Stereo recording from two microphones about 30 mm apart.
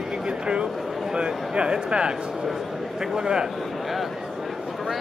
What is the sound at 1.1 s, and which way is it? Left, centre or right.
Speech, right.